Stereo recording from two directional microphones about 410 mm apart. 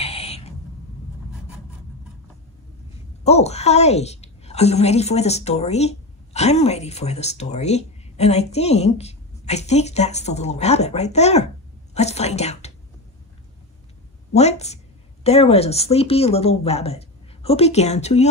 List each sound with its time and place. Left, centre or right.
0.0 s a sound: centre
3.3 s a woman's voice: centre
14.3 s a woman's voice: centre